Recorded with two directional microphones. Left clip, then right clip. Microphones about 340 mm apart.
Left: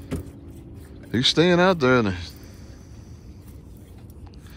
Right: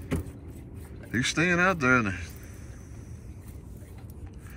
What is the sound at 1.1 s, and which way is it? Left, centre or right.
Speech, centre.